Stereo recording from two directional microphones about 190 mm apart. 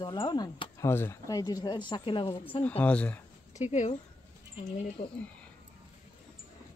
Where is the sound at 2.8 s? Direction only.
5° left (ahead or behind).